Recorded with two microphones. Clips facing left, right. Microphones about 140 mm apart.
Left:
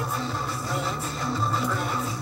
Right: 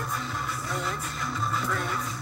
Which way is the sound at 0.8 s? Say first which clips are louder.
Left 3 dB; 30° left (ahead or behind).